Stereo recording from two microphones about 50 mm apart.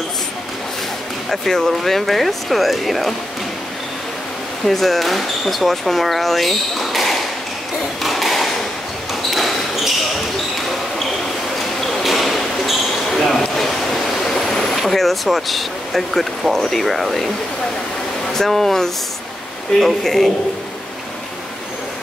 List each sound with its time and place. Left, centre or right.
1.3 s speech: centre
4.6 s speech: centre
8.0 s a sound: centre
11.8 s basketball bounce: centre
14.5 s speech: centre
18.3 s speech: centre